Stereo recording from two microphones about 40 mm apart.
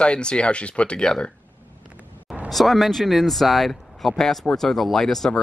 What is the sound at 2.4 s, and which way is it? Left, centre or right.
Speech, centre.